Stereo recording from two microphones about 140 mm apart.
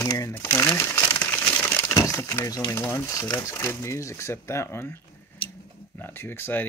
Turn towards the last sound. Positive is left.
turn(degrees=15)  # may be behind; listen again after turning